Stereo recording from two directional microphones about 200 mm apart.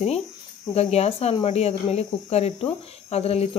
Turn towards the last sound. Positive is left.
turn(degrees=30)  # may be behind; listen again after turning